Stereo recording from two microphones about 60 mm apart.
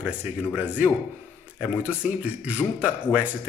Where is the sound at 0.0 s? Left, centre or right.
Centre.